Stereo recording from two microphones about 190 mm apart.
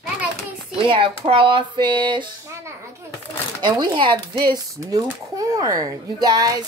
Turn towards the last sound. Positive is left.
turn(degrees=-20)  # may be behind; listen again after turning